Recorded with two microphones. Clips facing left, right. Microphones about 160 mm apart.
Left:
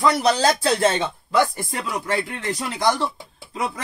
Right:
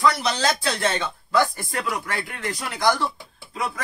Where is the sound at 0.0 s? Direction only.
35° left (ahead or behind).